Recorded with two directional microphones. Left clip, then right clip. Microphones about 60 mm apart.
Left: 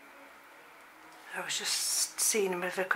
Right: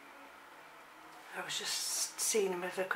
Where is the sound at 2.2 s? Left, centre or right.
Left.